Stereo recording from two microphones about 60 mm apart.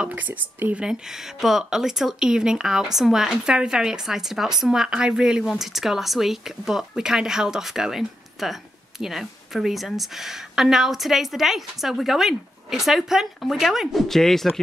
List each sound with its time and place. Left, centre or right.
0.1 s speech: right
1.4 s a woman's voice: centre